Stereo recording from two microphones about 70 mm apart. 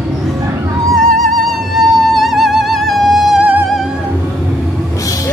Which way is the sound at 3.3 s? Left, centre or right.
Right.